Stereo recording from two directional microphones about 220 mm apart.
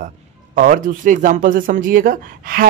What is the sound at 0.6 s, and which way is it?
Speech, 35° right (ahead or behind).